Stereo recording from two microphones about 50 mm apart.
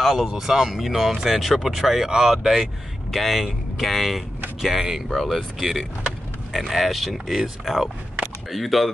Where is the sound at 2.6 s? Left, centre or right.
Centre.